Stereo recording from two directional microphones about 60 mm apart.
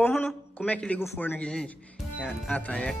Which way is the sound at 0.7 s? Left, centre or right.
Left.